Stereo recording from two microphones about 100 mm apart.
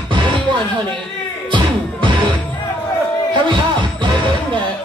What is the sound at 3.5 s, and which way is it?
Music, 55° right (ahead or behind).